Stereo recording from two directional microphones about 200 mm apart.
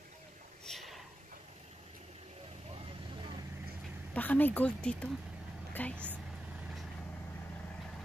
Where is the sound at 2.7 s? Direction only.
30° right (ahead or behind).